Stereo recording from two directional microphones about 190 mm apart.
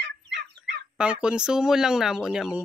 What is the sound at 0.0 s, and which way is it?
Fowl, 65° right (ahead or behind).